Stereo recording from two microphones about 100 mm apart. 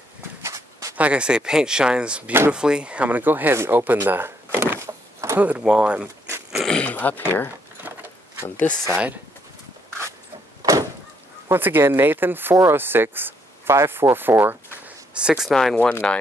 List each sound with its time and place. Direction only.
0.4 s a sound: 30° right (ahead or behind)
0.9 s speech: 10° right (ahead or behind); by 5.4 s 30° right (ahead or behind)
5.4 s speech: 10° right (ahead or behind)
6.5 s a sound: centre (ahead or behind)
6.8 s speech: 15° left (ahead or behind)
10.6 s door: 35° right (ahead or behind)
11.4 s speech: 20° right (ahead or behind)
15.1 s speech: 10° right (ahead or behind)
15.5 s speech: 5° left (ahead or behind)